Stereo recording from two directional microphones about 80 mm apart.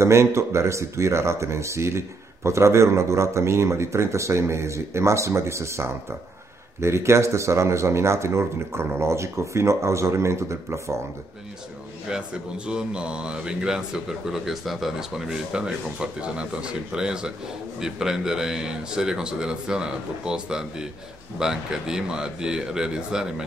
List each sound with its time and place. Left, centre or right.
0.0 s speech: right
12.1 s speech: centre